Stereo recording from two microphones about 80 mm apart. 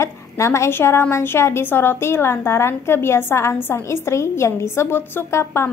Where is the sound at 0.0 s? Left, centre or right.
Left.